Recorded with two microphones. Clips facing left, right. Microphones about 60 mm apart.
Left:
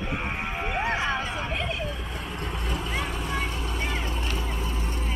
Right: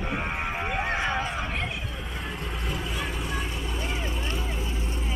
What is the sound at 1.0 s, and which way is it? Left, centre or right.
Music, right.